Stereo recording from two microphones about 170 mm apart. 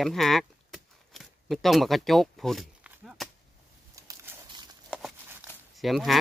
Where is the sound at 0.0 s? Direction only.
Centre (ahead or behind).